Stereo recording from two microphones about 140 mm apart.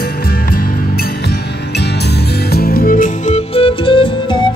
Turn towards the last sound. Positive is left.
turn(degrees=40)  # may be behind; listen again after turning